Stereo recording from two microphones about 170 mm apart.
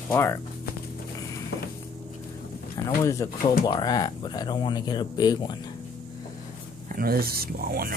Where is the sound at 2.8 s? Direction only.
20° left (ahead or behind).